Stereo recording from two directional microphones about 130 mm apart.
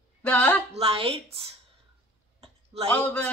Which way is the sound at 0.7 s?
50° right (ahead or behind).